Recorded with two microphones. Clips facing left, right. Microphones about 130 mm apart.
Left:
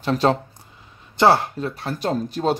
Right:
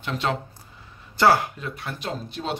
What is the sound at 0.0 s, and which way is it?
Speech, 35° left (ahead or behind).